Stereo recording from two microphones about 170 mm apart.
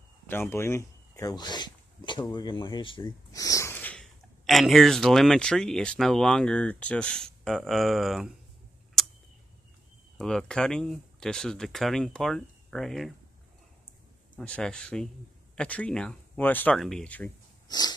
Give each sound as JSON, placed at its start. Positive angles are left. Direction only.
{"t": 0.3, "sound": "speech", "side_deg": 15}
{"t": 9.0, "sound": "tick-tock", "side_deg": 0}
{"t": 10.1, "sound": "speech", "side_deg": 5}
{"t": 14.4, "sound": "speech", "side_deg": 5}
{"t": 17.6, "sound": "wheeze", "side_deg": 25}